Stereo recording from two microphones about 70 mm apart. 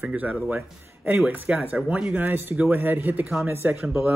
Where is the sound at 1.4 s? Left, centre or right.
Centre.